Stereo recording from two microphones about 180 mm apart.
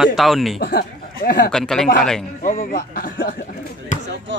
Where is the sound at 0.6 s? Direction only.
55° left (ahead or behind).